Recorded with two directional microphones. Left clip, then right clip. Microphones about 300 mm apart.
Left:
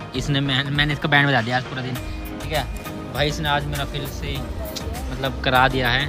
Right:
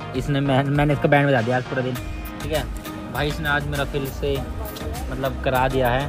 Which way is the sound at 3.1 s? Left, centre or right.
Centre.